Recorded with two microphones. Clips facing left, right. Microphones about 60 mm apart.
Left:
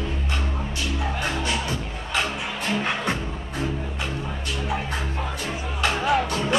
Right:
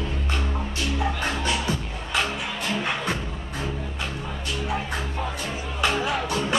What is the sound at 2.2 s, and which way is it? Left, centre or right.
Music, centre.